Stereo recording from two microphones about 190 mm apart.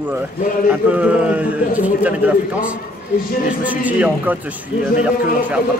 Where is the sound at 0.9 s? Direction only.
5° right (ahead or behind).